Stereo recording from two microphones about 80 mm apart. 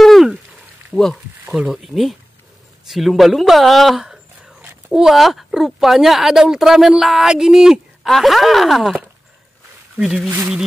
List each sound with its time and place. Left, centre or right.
0.0 s frying: centre
0.9 s speech: centre
1.5 s speech: centre
4.6 s a sound: right
4.9 s speech: centre
10.0 s speech: centre